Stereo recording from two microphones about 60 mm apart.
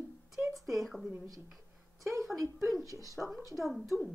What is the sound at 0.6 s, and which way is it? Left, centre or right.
Speech, centre.